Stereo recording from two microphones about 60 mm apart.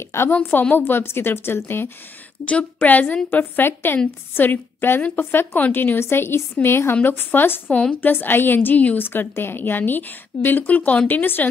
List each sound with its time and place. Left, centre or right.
0.4 s a woman's voice: left
2.4 s a woman's voice: left